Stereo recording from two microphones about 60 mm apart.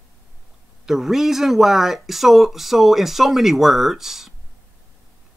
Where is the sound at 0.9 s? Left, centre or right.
Centre.